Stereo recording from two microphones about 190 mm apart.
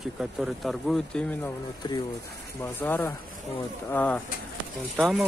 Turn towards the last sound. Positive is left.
turn(degrees=0)  # may be behind; listen again after turning